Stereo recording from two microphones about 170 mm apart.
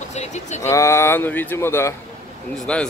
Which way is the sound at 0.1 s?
40° left (ahead or behind).